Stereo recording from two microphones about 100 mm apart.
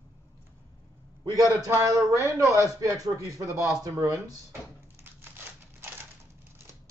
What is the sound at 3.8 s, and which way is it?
Speech, 35° right (ahead or behind).